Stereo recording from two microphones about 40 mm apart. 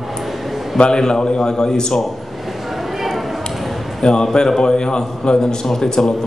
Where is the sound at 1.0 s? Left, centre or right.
Centre.